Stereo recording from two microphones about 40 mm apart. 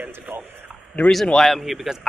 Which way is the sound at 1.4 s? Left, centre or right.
Centre.